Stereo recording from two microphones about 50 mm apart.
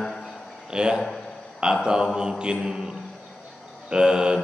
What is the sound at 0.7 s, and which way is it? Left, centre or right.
A man's voice, centre.